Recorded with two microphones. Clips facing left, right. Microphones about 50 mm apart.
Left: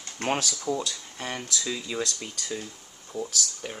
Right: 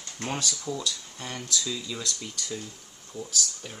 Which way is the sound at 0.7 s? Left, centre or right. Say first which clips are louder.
Left 2 dB; left.